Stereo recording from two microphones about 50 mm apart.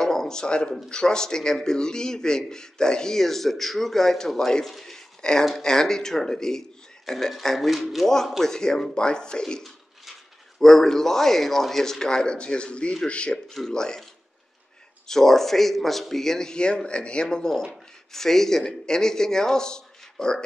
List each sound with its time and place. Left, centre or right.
0.0 s a sound: centre
0.8 s a man's voice: centre
10.6 s a man's voice: centre
15.0 s a man's voice: centre